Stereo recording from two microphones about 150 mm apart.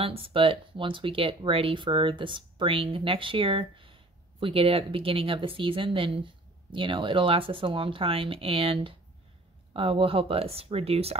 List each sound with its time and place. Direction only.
0.0 s speech: 35° right (ahead or behind)